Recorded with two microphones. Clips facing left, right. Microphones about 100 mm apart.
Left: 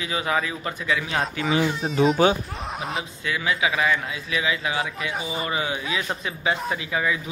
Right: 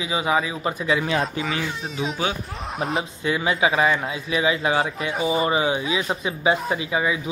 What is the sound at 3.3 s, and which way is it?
Speech, 30° right (ahead or behind).